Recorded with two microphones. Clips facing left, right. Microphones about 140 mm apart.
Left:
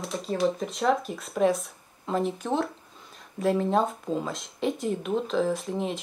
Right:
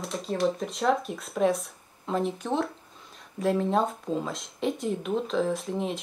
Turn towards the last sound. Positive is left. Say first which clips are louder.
# left 1 dB
turn(degrees=0)  # may be behind; listen again after turning